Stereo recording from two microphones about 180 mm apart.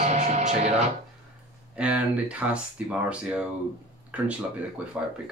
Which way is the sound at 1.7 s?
5° right (ahead or behind).